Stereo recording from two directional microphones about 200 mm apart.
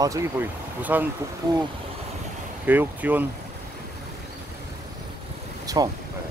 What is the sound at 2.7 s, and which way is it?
Speech, 10° right (ahead or behind).